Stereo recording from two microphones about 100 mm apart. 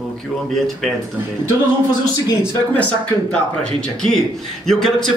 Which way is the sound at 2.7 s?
15° left (ahead or behind).